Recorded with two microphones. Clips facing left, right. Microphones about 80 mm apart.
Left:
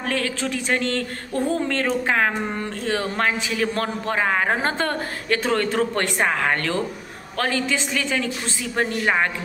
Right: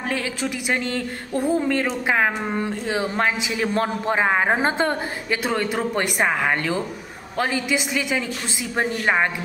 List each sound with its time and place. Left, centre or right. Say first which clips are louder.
0.0 s speech: left 1 dB; centre